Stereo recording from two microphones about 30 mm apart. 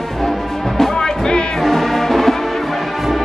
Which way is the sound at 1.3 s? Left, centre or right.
Left.